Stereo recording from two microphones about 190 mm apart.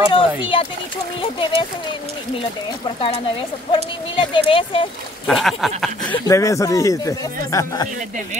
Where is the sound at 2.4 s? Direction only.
30° left (ahead or behind).